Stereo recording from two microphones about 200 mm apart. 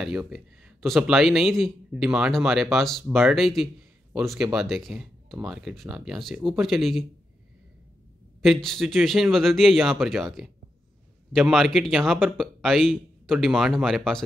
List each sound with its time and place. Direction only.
0.0 s speech: 5° right (ahead or behind)
8.4 s speech: centre (ahead or behind)